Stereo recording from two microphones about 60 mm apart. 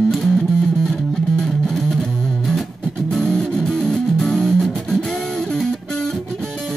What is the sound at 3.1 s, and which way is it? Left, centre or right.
Music, centre.